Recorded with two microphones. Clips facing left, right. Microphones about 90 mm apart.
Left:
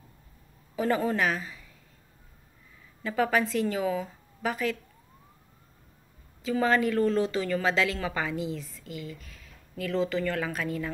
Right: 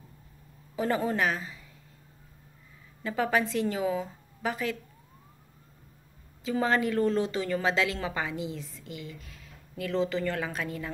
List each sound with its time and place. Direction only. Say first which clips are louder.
0.7 s a woman's voice: left 1 dB; 20° right (ahead or behind)
3.0 s a woman's voice: left 1 dB; 20° right (ahead or behind)
6.4 s a woman's voice: left 2 dB; 20° right (ahead or behind)